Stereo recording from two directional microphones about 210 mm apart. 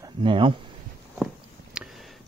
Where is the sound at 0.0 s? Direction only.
25° right (ahead or behind).